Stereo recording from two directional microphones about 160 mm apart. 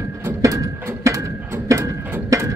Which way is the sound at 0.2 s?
15° right (ahead or behind).